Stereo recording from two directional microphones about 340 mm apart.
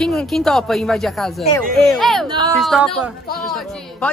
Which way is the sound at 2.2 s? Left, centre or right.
Centre.